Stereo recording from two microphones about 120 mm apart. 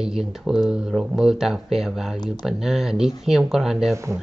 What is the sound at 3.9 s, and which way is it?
Speech, 25° right (ahead or behind).